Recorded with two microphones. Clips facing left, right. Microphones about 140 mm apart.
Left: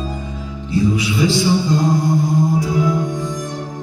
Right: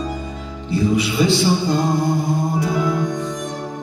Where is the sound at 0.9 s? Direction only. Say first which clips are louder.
Even; 60° right (ahead or behind).